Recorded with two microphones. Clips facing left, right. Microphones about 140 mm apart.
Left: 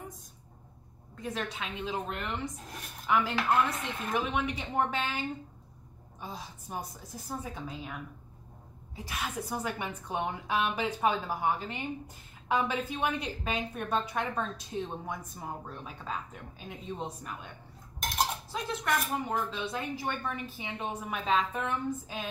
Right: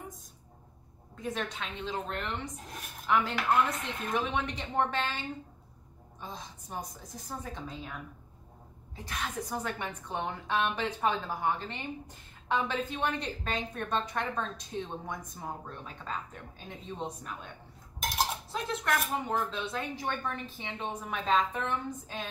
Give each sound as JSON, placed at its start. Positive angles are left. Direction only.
{"t": 1.1, "sound": "a woman's voice", "side_deg": 0}
{"t": 6.2, "sound": "a woman's voice", "side_deg": 10}
{"t": 8.9, "sound": "a woman's voice", "side_deg": 10}